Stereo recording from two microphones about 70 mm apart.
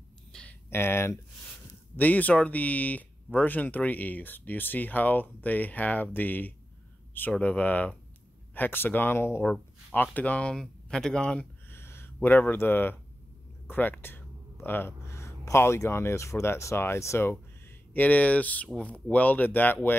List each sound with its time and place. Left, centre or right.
0.3 s a sound: centre
0.7 s speech: left
2.0 s speech: left
10.1 s speech: left
10.5 s speech: centre
11.7 s a sound: left
13.7 s speech: left
18.0 s speech: left